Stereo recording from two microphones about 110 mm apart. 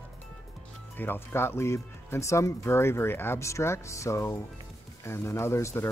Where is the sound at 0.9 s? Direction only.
20° left (ahead or behind).